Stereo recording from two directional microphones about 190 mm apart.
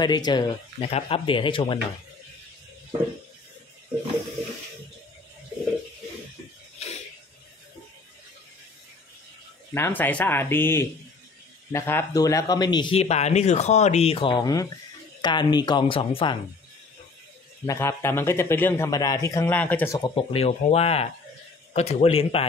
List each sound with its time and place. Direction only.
0.0 s a man's voice: 20° left (ahead or behind)
9.8 s a man's voice: 10° left (ahead or behind); by 16.3 s 30° left (ahead or behind)
17.6 s a man's voice: 15° left (ahead or behind)
20.0 s speech: 30° left (ahead or behind)